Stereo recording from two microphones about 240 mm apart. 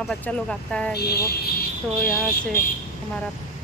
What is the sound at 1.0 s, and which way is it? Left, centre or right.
Speech, left.